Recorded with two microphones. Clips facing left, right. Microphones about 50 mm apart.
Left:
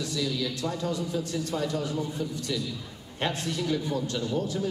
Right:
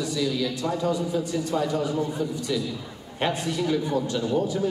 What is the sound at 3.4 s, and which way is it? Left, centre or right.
Speech, centre.